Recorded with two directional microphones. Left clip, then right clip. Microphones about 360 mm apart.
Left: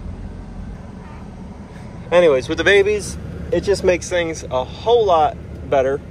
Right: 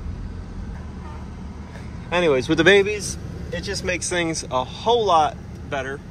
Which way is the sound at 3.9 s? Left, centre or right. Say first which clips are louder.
Left 3 dB; centre.